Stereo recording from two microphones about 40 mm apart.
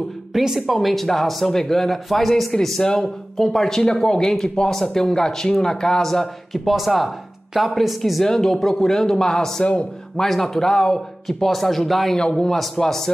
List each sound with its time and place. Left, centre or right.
0.3 s speech: centre
6.5 s speech: centre
8.2 s speech: centre
11.2 s speech: centre
12.2 s speech: centre